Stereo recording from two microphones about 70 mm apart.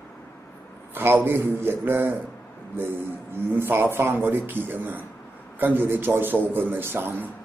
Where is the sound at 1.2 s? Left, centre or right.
Right.